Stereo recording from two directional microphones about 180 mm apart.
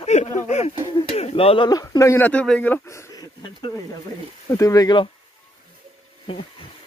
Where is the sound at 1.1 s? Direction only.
35° left (ahead or behind).